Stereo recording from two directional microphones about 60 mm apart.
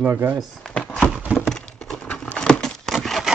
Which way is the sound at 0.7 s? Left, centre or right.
Centre.